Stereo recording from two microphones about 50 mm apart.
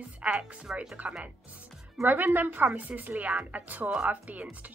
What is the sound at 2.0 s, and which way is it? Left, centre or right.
Speech, right.